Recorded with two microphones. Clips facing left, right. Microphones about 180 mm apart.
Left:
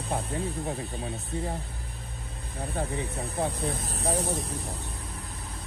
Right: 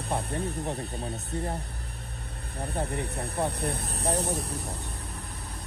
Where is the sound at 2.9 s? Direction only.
65° right (ahead or behind).